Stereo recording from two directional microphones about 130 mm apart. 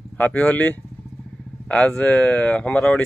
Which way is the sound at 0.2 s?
10° left (ahead or behind).